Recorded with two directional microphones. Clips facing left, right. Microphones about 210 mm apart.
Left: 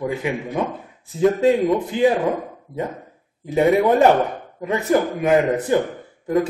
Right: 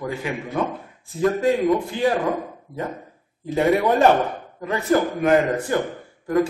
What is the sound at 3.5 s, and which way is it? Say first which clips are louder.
Speech: left 3 dB; 20° left (ahead or behind).